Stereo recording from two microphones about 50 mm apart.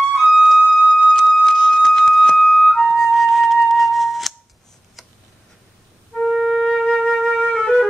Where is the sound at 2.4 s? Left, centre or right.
Centre.